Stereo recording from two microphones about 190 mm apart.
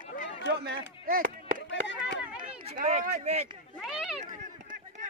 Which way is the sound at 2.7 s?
40° right (ahead or behind).